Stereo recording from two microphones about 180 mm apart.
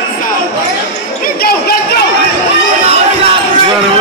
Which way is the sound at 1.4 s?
60° left (ahead or behind).